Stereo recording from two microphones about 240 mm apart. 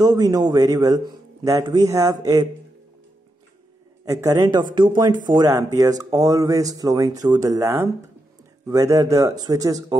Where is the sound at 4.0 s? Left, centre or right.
Centre.